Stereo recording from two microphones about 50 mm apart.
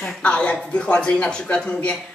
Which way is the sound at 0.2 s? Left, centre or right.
Left.